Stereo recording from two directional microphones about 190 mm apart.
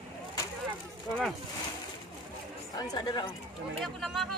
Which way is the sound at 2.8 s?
20° left (ahead or behind).